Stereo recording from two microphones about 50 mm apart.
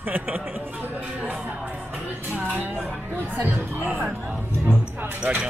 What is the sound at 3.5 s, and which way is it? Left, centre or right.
Speech, right.